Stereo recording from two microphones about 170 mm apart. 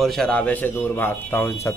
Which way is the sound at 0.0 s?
Centre (ahead or behind).